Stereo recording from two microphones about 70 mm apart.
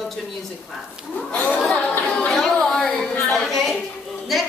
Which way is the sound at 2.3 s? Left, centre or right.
Centre.